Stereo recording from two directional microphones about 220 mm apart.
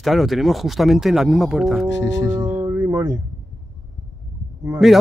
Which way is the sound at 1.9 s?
55° left (ahead or behind).